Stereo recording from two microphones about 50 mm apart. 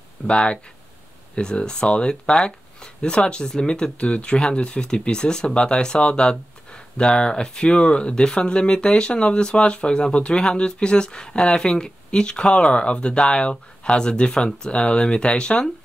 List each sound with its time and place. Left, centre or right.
0.3 s speech: left